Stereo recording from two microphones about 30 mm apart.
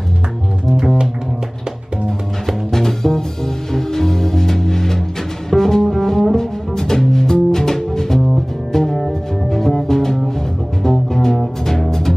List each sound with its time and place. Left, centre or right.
2.7 s music: centre